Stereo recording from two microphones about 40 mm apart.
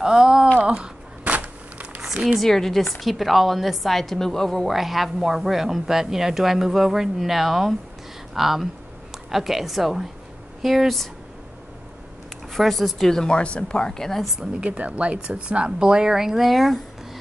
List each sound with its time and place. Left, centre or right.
0.0 s a sound: centre
1.2 s a sound: right
2.4 s a woman's voice: centre
4.6 s a woman's voice: centre
12.5 s a woman's voice: centre
13.2 s speech: left
14.4 s speech: right; by 16.4 s centre
16.4 s a woman's voice: centre